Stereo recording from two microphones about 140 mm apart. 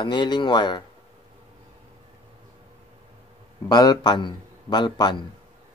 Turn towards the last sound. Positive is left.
turn(degrees=35)  # may be behind; listen again after turning